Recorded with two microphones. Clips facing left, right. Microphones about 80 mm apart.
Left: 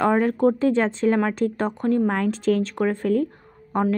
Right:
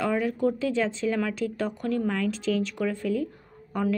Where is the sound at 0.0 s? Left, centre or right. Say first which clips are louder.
Left 6 dB; left.